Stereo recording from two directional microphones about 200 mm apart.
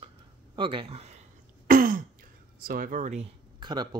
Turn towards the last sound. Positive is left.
turn(degrees=-20)  # may be behind; listen again after turning